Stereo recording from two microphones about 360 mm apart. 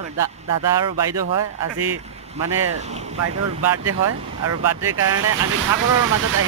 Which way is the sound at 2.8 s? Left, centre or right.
Centre.